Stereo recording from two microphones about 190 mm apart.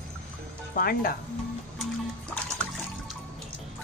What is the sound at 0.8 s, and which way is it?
Speech, 50° left (ahead or behind).